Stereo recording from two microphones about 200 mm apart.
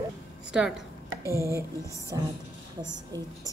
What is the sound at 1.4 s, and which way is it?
Speech, 15° right (ahead or behind).